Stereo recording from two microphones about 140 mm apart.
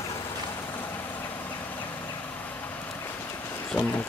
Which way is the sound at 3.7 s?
5° left (ahead or behind).